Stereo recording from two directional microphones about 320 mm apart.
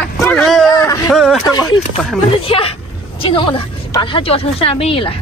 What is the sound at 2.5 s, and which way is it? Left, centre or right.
Speech, centre.